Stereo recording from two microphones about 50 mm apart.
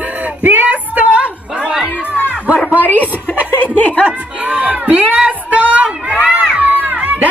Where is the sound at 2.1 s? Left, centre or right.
Left.